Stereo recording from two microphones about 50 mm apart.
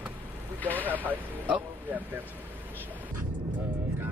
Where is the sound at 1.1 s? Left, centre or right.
Right.